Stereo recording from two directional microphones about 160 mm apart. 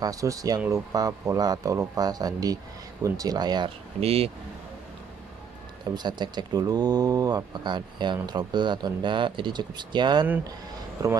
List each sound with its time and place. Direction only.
0.0 s speech: 20° right (ahead or behind); by 4.3 s 40° right (ahead or behind)
5.9 s speech: 25° right (ahead or behind)